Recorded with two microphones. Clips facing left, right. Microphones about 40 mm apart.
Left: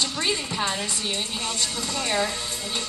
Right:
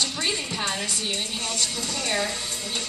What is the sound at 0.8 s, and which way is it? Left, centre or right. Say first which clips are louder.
A woman's voice: even; left.